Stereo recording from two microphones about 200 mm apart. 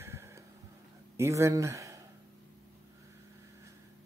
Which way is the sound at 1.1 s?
15° right (ahead or behind).